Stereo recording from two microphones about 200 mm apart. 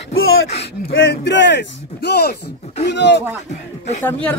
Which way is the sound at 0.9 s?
60° left (ahead or behind).